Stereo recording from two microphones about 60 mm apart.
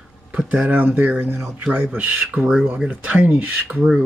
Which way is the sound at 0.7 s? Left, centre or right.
Right.